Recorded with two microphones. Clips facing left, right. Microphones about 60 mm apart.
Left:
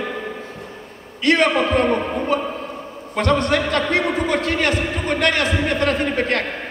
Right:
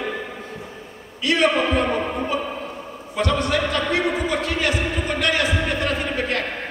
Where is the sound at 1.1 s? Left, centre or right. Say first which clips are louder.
Left 3 dB; left.